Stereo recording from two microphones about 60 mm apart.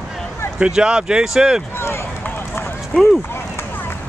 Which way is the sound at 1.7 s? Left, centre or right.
Left.